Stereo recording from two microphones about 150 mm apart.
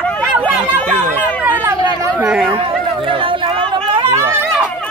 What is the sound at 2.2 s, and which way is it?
Speech, 5° right (ahead or behind).